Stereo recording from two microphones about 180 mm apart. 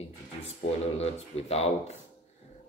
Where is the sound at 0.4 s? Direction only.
35° left (ahead or behind).